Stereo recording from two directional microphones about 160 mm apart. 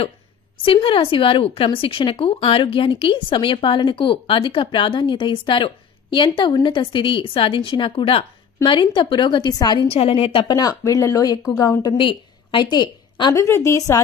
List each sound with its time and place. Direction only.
0.7 s speech: 30° left (ahead or behind)
10.6 s speech: 20° left (ahead or behind)